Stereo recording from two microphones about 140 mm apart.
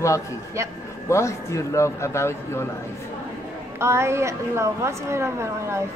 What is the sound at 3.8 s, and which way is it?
A woman's voice, 20° right (ahead or behind).